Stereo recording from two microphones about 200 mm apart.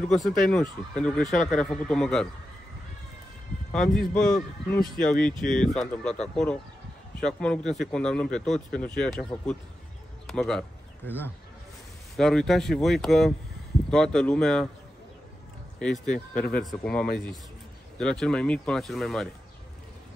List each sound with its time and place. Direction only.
0.0 s speech: 5° left (ahead or behind)
4.3 s speech: 45° left (ahead or behind)
5.1 s speech: 5° left (ahead or behind)
15.8 s speech: 5° left (ahead or behind)
16.3 s speech: 50° left (ahead or behind)
16.6 s speech: 5° left (ahead or behind)